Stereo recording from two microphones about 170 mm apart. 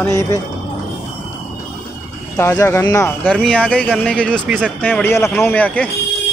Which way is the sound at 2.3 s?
15° left (ahead or behind).